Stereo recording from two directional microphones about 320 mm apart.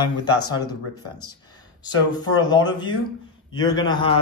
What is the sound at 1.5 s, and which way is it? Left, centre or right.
Speech, centre.